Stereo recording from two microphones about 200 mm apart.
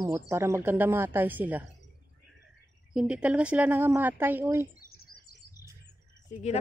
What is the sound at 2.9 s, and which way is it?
A woman's voice, 5° right (ahead or behind).